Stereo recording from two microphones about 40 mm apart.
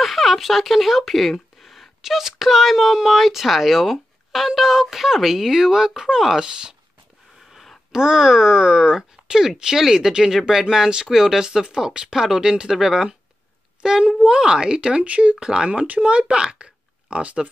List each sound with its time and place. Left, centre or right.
0.0 s speech: centre
7.9 s speech: centre; by 15.3 s right
15.3 s speech: centre